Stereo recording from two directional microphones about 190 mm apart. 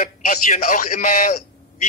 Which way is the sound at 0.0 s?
40° left (ahead or behind).